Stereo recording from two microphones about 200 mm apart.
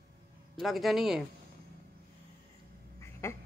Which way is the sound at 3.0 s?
15° left (ahead or behind).